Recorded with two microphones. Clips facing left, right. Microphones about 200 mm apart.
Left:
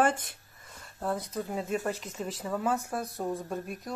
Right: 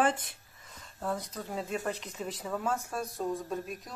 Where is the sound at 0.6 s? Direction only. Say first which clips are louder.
Left 2 dB; 5° left (ahead or behind).